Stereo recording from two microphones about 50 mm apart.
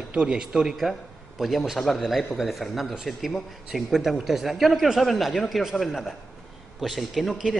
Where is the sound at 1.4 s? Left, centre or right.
Centre.